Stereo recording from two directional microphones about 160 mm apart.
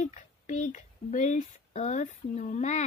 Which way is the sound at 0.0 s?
50° left (ahead or behind).